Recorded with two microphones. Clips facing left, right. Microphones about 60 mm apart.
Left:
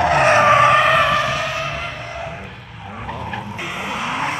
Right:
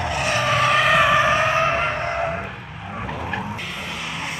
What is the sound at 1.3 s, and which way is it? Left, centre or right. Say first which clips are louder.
Vehicle: right 4 dB; right.